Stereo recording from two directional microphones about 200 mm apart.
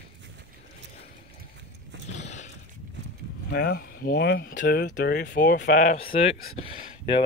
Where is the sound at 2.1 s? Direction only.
35° left (ahead or behind).